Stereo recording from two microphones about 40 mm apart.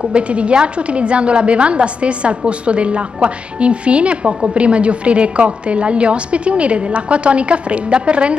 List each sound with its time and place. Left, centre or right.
0.0 s a woman's voice: right